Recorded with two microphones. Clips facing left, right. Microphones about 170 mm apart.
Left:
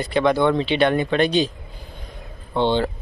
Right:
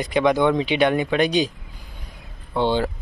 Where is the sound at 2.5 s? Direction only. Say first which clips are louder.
Left 1 dB; 5° right (ahead or behind).